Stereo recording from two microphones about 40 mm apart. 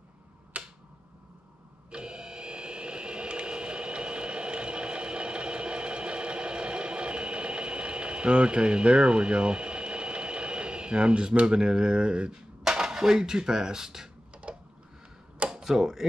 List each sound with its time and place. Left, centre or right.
0.5 s finger snapping: right
1.9 s a sound: right
12.6 s speech: centre
14.3 s tick-tock: right
15.5 s speech: centre